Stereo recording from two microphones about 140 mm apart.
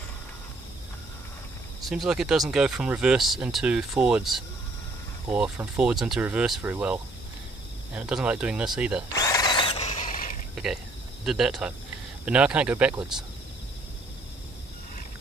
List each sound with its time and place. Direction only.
1.9 s speech: 5° right (ahead or behind)
9.1 s drill: 25° left (ahead or behind); by 10.3 s 70° left (ahead or behind)
10.5 s speech: 5° right (ahead or behind)